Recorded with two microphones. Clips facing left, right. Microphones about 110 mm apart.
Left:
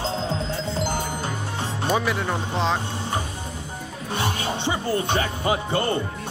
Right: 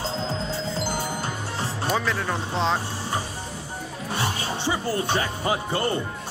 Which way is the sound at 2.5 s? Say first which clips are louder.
Even; centre (ahead or behind).